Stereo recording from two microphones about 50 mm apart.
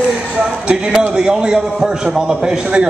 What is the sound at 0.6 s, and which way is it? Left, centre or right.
A man's voice, centre.